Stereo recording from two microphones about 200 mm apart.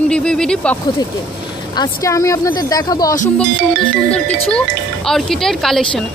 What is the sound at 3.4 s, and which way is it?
Speech, 5° left (ahead or behind).